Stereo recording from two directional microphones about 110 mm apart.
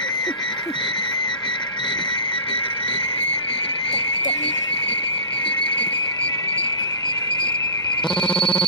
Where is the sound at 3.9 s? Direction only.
50° left (ahead or behind).